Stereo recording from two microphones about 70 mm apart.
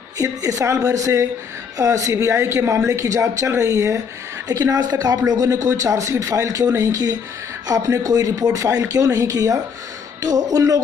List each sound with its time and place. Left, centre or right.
0.2 s a woman's voice: right
4.5 s a woman's voice: right